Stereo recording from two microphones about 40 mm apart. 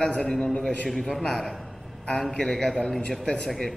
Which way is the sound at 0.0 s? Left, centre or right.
Left.